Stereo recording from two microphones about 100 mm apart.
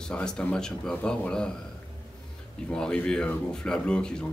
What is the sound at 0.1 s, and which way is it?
A man's voice, 10° left (ahead or behind).